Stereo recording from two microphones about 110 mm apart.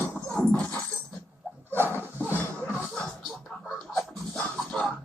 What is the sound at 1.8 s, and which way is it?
Dog, 15° left (ahead or behind).